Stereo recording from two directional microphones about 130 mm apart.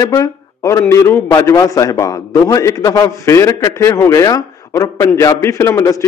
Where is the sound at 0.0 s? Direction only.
25° left (ahead or behind).